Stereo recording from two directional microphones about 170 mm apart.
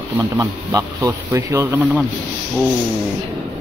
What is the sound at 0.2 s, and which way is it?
Speech, 20° right (ahead or behind).